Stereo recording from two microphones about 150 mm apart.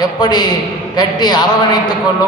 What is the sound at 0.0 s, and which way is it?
A man's voice, 25° left (ahead or behind).